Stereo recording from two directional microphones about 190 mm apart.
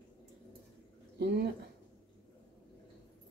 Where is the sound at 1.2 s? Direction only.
60° right (ahead or behind).